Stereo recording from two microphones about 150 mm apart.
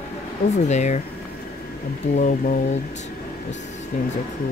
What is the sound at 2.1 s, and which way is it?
Mantra, 60° left (ahead or behind).